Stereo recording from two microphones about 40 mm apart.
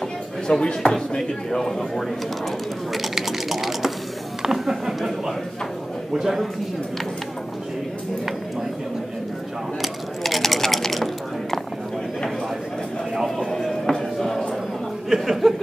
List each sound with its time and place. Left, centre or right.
0.6 s speech: left
1.1 s a man's voice: centre
2.9 s typing: centre
4.4 s speech: centre
9.8 s a sound: centre
13.4 s speech: centre
15.0 s speech: centre